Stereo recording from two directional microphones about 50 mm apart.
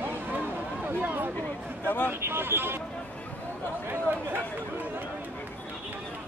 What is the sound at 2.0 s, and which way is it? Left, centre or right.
Speech, right.